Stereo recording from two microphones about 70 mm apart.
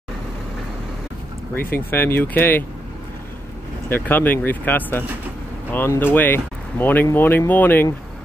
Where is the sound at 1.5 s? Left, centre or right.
Left.